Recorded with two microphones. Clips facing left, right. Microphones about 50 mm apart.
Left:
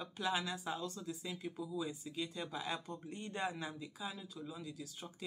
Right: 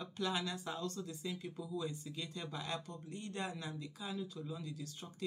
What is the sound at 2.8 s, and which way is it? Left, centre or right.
Speech, centre.